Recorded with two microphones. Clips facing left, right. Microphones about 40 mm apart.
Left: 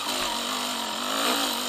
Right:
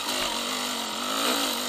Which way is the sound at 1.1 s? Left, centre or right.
Left.